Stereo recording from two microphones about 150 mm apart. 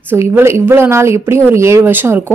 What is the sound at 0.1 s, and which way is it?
A woman's voice, 15° right (ahead or behind).